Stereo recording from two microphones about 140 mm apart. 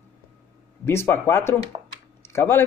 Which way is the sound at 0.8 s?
15° left (ahead or behind).